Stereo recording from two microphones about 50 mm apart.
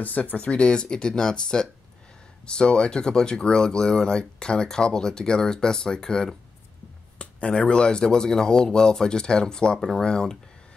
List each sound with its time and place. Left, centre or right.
0.0 s speech: left; by 6.3 s centre
7.2 s speech: left